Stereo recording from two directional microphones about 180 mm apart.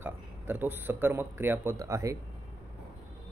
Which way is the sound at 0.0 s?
10° right (ahead or behind).